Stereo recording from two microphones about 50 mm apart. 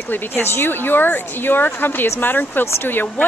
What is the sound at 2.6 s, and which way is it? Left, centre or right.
Speech, left.